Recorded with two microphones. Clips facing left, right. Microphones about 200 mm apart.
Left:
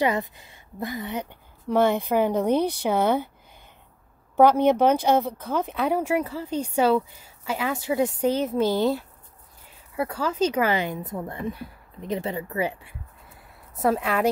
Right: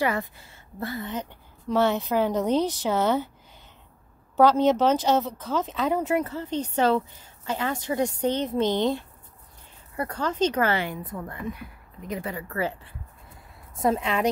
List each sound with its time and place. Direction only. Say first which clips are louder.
0.0 s speech: left 2 dB; 20° left (ahead or behind)
4.4 s speech: left 2 dB; 15° left (ahead or behind)
13.7 s a woman's voice: left 1 dB; 5° left (ahead or behind)